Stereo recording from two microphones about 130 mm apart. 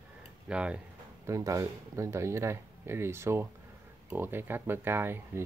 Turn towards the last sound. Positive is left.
turn(degrees=-15)  # may be behind; listen again after turning